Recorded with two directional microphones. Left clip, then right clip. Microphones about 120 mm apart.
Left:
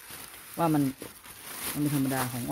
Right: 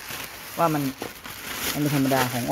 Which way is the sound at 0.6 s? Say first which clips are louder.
Right 4 dB; 60° left (ahead or behind).